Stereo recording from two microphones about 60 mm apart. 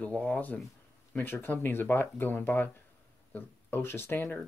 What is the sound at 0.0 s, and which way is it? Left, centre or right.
Speech, left.